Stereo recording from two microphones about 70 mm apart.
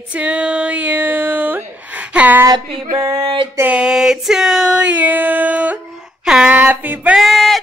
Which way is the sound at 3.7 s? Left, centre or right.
Centre.